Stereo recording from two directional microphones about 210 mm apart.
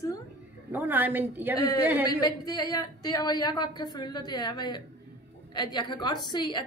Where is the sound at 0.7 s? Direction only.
10° right (ahead or behind).